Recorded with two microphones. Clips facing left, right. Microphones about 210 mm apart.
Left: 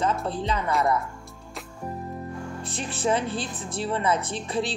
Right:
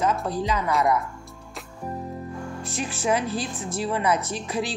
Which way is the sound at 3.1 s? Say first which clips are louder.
Right 4 dB; 30° left (ahead or behind).